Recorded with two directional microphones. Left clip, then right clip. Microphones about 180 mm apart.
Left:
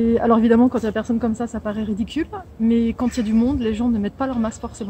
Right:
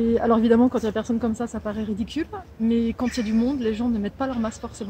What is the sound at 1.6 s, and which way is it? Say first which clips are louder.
Speech: left 3 dB; 30° left (ahead or behind).